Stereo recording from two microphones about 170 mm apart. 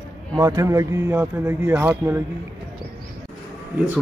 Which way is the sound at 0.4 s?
15° right (ahead or behind).